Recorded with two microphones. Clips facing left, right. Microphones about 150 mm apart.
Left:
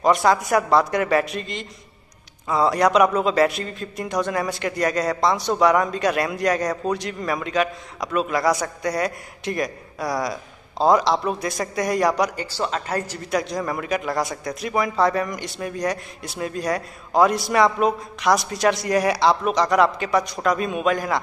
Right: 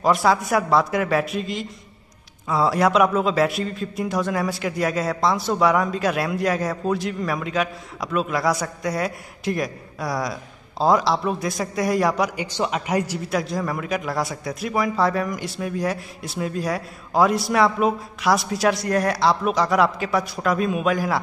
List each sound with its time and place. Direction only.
0.0 s speech: centre (ahead or behind)
12.4 s speech: 15° right (ahead or behind)
13.3 s speech: centre (ahead or behind)